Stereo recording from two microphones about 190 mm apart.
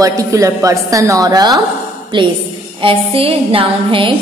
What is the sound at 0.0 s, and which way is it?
A woman's voice, 15° right (ahead or behind).